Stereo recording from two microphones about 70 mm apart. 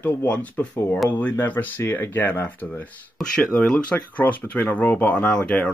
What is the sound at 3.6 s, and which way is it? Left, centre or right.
Speech, centre.